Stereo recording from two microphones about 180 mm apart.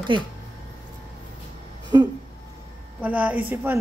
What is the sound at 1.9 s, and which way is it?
Speech, 20° right (ahead or behind).